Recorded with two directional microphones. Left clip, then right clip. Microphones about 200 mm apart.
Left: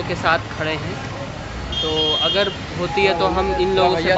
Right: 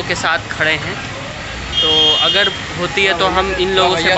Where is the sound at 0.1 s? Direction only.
Centre (ahead or behind).